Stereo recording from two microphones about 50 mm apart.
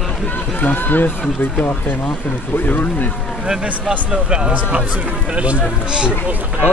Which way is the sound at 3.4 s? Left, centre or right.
Centre.